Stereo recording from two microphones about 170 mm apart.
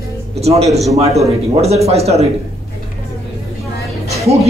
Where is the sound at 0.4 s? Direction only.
40° right (ahead or behind).